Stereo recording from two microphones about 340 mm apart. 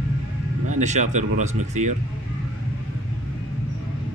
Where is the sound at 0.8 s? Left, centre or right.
Right.